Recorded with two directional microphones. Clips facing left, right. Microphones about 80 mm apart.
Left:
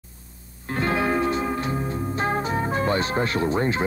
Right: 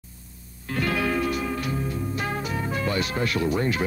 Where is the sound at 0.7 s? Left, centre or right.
Left.